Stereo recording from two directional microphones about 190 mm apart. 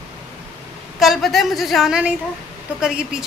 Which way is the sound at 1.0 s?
Centre (ahead or behind).